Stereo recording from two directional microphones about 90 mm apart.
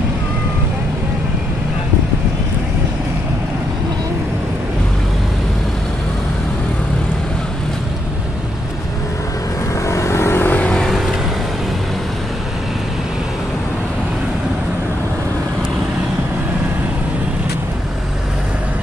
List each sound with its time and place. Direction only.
9.8 s vehicle: 30° left (ahead or behind)
10.7 s vehicle: 5° left (ahead or behind)